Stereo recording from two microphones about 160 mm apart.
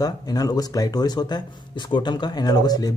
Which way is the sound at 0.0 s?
25° left (ahead or behind).